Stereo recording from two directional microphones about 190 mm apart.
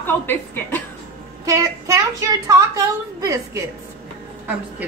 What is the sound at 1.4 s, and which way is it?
A woman's voice, 15° right (ahead or behind).